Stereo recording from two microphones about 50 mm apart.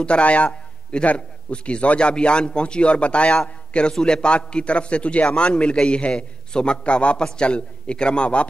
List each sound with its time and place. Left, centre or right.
0.0 s a man's voice: left